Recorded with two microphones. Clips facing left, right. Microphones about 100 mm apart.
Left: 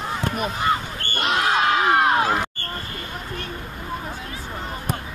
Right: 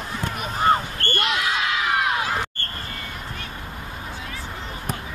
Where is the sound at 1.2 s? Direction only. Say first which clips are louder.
Left 6 dB; 40° left (ahead or behind).